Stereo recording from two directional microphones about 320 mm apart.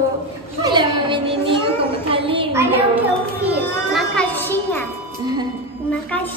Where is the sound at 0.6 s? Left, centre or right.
Centre.